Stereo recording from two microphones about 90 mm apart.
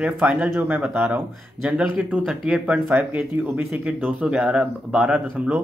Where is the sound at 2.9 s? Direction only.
25° right (ahead or behind).